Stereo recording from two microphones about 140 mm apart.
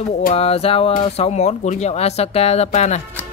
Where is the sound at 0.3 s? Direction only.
45° left (ahead or behind).